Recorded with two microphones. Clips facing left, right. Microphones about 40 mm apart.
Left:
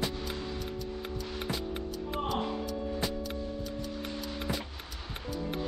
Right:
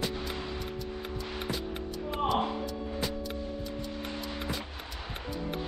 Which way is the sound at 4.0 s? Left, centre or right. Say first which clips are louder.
Right 1 dB; centre.